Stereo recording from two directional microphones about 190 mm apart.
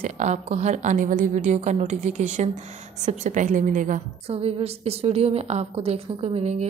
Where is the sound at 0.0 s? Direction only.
35° right (ahead or behind).